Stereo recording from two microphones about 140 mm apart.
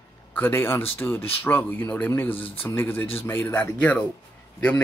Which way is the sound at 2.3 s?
40° left (ahead or behind).